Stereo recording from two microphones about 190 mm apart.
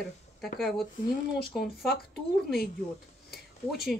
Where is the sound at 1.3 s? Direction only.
55° left (ahead or behind).